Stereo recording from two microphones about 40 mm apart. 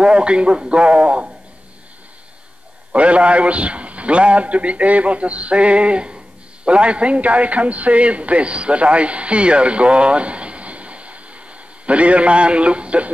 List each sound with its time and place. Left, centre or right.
0.0 s a man's voice: right
2.9 s a man's voice: right